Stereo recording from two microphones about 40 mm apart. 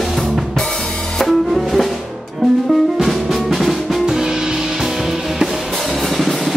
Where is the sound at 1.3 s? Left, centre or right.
Centre.